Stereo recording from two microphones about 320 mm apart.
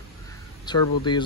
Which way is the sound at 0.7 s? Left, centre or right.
Centre.